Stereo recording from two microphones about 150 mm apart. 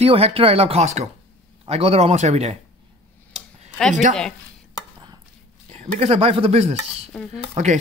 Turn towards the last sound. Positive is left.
turn(degrees=-50)  # may be behind; listen again after turning